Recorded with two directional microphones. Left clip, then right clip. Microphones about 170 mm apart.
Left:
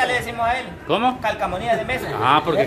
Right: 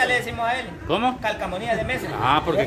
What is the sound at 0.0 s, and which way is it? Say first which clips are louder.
A man's voice: left 1 dB; 5° left (ahead or behind).